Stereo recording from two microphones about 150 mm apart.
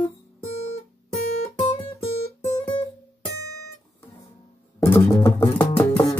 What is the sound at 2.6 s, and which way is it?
Music, 35° left (ahead or behind).